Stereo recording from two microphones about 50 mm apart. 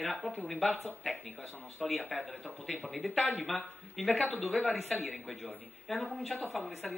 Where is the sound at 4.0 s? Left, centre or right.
Centre.